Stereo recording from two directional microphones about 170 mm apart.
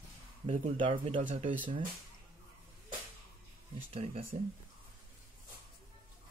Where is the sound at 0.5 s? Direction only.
30° right (ahead or behind).